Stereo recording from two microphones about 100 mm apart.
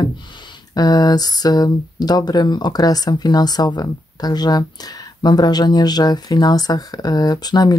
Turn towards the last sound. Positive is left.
turn(degrees=40)  # may be behind; listen again after turning